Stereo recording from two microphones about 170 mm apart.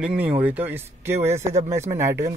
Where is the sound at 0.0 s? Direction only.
10° right (ahead or behind).